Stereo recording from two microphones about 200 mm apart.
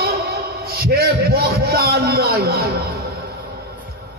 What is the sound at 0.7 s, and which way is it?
A man's voice, 50° right (ahead or behind).